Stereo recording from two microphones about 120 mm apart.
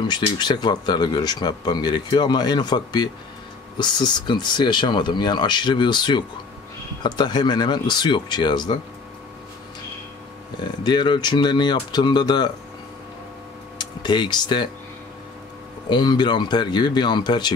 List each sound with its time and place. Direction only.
0.1 s speech: 35° left (ahead or behind)
10.8 s speech: 40° left (ahead or behind)
13.7 s speech: 40° left (ahead or behind)
15.9 s speech: 35° left (ahead or behind)